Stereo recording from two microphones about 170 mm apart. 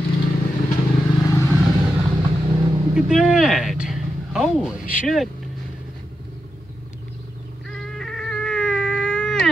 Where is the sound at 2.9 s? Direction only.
Centre (ahead or behind).